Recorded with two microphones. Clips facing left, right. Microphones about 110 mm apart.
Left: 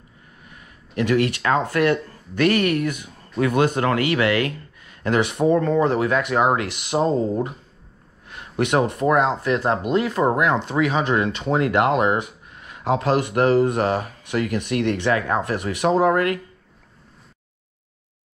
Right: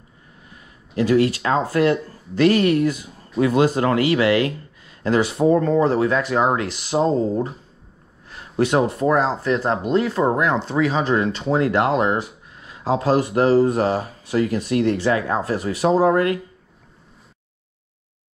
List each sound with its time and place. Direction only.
0.9 s speech: 30° right (ahead or behind)
6.9 s speech: centre (ahead or behind)
8.3 s speech: 35° right (ahead or behind)
9.5 s speech: centre (ahead or behind)
12.6 s speech: 35° right (ahead or behind)